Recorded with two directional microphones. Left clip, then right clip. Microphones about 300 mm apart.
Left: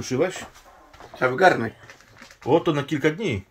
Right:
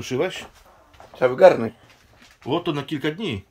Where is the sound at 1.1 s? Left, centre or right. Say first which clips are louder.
Right 4 dB; right.